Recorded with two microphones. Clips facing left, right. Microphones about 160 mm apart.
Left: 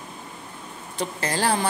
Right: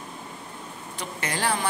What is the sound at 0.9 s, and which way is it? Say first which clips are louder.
Speech: left 5 dB; 35° left (ahead or behind).